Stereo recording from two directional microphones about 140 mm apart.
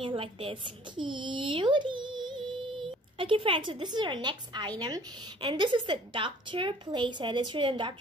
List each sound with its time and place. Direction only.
0.0 s a woman's voice: 40° right (ahead or behind)